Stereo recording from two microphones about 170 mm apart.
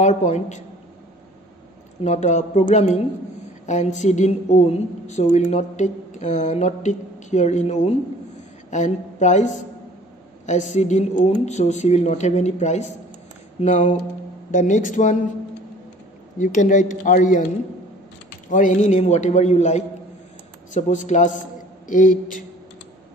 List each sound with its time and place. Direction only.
0.0 s a woman's voice: 45° left (ahead or behind)
2.0 s a man's voice: 45° left (ahead or behind)
16.3 s a woman's voice: 50° left (ahead or behind)
18.5 s a woman's voice: 45° left (ahead or behind)